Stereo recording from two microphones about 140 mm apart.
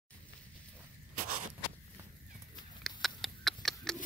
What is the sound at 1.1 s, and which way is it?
Walk, 90° right.